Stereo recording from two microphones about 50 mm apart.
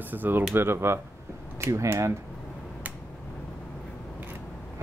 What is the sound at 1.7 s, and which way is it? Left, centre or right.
Speech, right.